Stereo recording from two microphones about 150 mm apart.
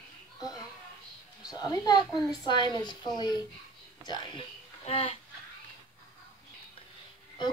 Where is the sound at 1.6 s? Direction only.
25° left (ahead or behind).